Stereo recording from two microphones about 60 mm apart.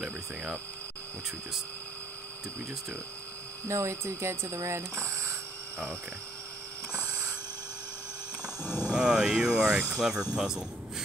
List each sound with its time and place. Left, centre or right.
0.0 s speech: right
3.6 s speech: right
8.6 s speech: centre